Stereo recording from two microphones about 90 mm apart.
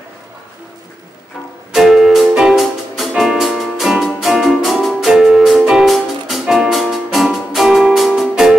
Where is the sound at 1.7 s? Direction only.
5° right (ahead or behind).